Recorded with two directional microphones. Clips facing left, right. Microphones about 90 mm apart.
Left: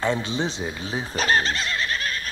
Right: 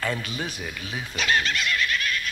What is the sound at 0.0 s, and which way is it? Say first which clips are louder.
Speech: left 5 dB; 25° left (ahead or behind).